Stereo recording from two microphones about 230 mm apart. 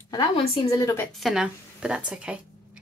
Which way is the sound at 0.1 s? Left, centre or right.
Left.